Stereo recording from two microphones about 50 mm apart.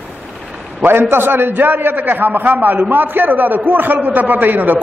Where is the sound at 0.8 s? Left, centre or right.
Right.